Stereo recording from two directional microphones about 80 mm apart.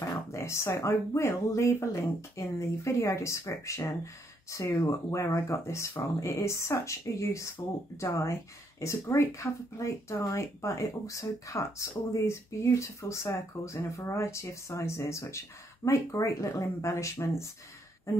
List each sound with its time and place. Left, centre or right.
0.3 s speech: left